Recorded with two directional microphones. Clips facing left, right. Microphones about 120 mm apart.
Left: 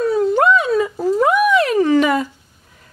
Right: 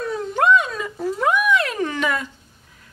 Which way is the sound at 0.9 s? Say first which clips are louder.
Left 1 dB; 35° left (ahead or behind).